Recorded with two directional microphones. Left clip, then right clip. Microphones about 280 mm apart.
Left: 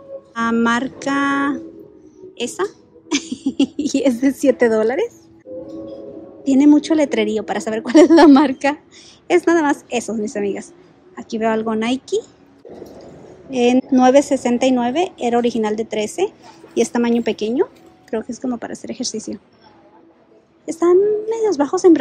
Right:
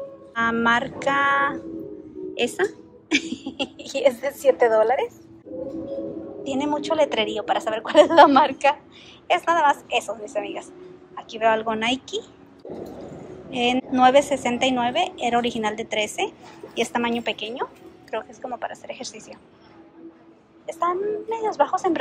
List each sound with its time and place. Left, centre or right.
0.3 s music: centre
2.3 s a woman's voice: centre
6.5 s a woman's voice: left
11.7 s music: centre
13.5 s a woman's voice: centre
18.1 s music: centre
20.7 s a woman's voice: centre